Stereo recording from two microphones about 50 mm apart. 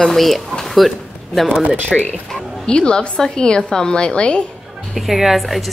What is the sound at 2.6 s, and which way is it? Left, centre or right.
A woman's voice, centre.